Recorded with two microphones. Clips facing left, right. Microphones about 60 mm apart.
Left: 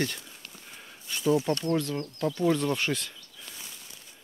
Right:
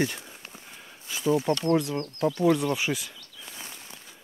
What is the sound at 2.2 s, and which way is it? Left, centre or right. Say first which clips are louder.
Speech: right 3 dB; centre.